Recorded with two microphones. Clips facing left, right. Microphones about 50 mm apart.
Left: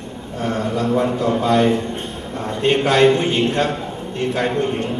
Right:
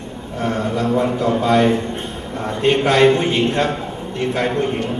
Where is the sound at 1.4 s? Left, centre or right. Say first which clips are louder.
Right 1 dB; right.